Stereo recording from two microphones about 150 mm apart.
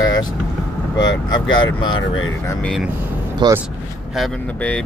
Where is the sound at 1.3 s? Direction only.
30° left (ahead or behind).